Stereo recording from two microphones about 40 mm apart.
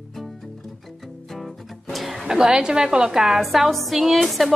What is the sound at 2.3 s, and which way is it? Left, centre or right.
A woman's voice, centre.